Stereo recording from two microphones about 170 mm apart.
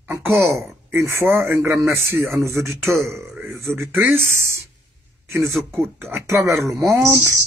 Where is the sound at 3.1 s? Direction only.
15° right (ahead or behind).